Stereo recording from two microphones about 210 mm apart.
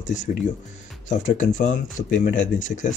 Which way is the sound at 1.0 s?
35° left (ahead or behind).